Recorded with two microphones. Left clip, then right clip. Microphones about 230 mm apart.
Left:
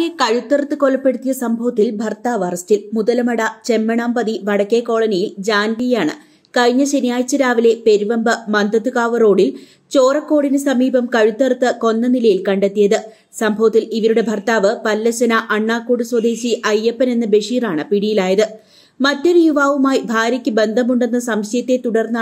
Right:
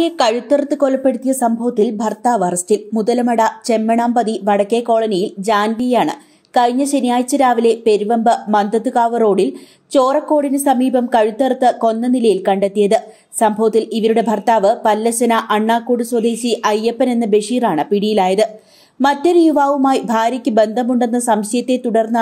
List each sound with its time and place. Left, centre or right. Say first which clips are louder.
0.0 s a woman's voice: right 2 dB; centre
2.2 s a woman's voice: right 3 dB; right